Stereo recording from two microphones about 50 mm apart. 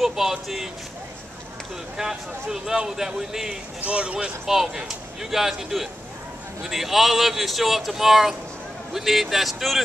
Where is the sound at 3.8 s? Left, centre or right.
Right.